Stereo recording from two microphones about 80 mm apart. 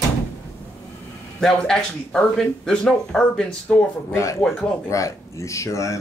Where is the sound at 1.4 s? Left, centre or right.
Centre.